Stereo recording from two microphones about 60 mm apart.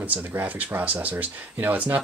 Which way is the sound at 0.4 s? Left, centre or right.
Right.